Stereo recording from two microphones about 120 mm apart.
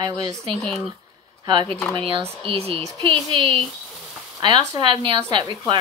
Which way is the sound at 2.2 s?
55° right (ahead or behind).